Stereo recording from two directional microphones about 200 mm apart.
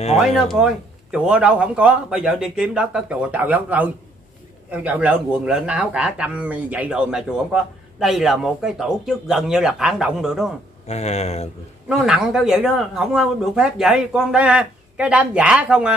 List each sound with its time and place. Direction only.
0.5 s speech: 5° right (ahead or behind)
10.9 s speech: 35° left (ahead or behind)
11.9 s speech: centre (ahead or behind)